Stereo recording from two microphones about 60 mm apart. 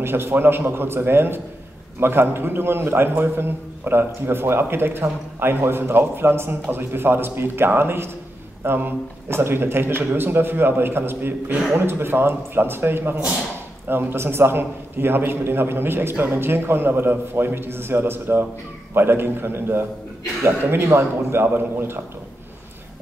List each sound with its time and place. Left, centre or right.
0.0 s a man's voice: right